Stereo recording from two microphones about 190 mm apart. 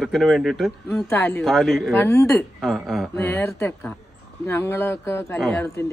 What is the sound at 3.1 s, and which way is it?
A man's voice, 15° left (ahead or behind).